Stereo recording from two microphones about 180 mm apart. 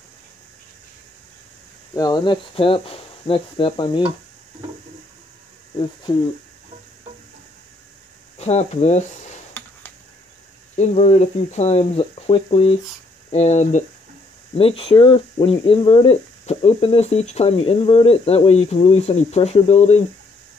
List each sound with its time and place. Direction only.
2.0 s speech: 25° left (ahead or behind)
8.4 s speech: 40° left (ahead or behind)
9.6 s a sound: 15° left (ahead or behind)
10.8 s speech: 40° left (ahead or behind)